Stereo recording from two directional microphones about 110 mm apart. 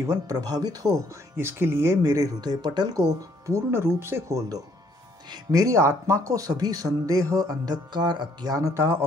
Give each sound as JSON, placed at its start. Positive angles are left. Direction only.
{"t": 0.0, "sound": "speech", "side_deg": -30}